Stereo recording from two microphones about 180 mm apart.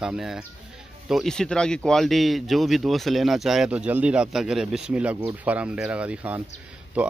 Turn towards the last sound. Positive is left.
turn(degrees=-5)  # may be behind; listen again after turning